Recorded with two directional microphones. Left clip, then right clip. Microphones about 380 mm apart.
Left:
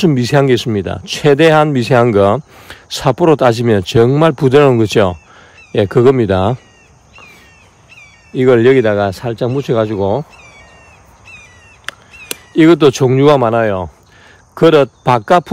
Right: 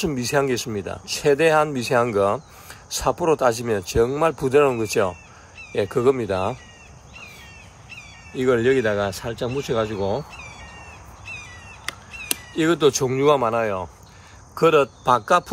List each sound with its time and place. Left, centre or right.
0.0 s speech: left
6.1 s speech: left
7.9 s speech: centre
11.8 s speech: centre